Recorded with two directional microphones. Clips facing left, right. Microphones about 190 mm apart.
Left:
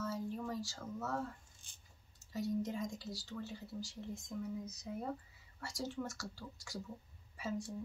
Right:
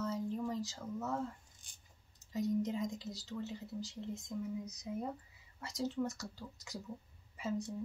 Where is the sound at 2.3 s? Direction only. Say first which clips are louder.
Right 3 dB; 20° right (ahead or behind).